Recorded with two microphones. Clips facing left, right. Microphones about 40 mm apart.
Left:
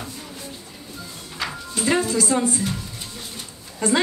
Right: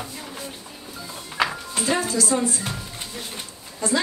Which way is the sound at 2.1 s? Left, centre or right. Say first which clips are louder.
Left 2 dB; left.